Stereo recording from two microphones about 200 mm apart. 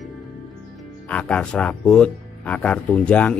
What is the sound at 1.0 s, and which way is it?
Speech, 5° left (ahead or behind).